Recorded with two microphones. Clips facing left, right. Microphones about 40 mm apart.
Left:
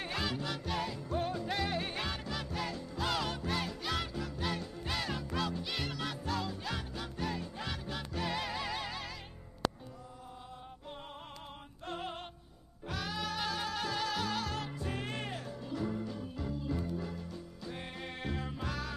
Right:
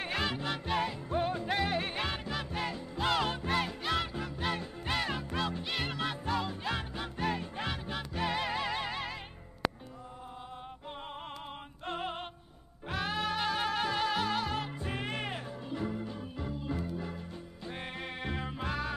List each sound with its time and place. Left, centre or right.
0.0 s music: right
7.7 s music: right
11.8 s music: right
16.0 s organ: right
16.8 s music: right